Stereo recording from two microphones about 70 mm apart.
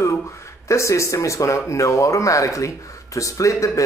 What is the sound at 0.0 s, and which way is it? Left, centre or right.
Speech, left.